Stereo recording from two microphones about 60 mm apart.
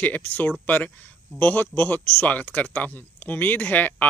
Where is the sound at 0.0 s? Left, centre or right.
Left.